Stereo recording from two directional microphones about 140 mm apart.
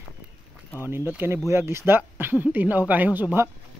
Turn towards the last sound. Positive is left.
turn(degrees=-15)  # may be behind; listen again after turning